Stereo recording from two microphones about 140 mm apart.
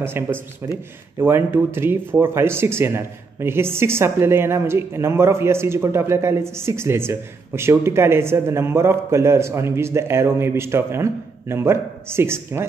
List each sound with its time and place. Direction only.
0.0 s speech: 15° right (ahead or behind)